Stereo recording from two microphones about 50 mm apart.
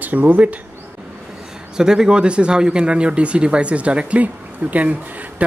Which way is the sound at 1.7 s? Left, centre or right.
Centre.